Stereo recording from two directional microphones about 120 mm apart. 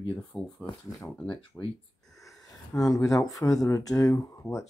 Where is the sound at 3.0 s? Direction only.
25° left (ahead or behind).